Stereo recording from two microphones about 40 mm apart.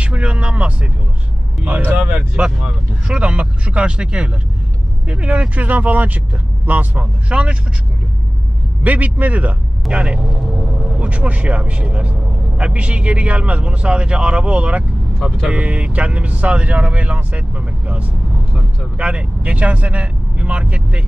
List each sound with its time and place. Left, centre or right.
0.0 s speech: right
2.0 s a man's voice: right
5.6 s speech: right
7.2 s a man's voice: right
8.8 s speech: right
9.8 s a man's voice: right
10.3 s speech: centre
10.6 s vehicle: centre
11.0 s a man's voice: right